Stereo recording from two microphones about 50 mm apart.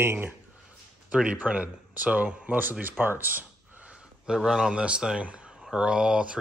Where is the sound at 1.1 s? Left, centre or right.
Right.